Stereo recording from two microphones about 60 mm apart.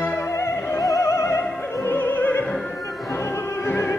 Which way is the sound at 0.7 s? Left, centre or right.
Left.